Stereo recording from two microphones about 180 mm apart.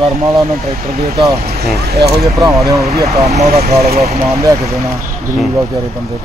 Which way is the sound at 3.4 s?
55° right (ahead or behind).